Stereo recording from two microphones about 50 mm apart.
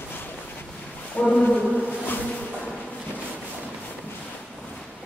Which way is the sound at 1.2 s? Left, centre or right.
Left.